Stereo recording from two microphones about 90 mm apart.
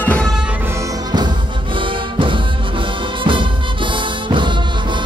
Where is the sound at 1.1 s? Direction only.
60° right (ahead or behind).